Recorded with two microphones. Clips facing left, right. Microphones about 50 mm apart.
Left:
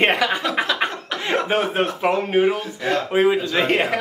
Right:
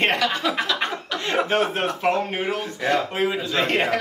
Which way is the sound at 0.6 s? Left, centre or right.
Centre.